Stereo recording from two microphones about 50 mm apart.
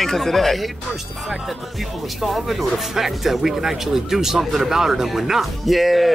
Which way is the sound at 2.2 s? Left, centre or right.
Centre.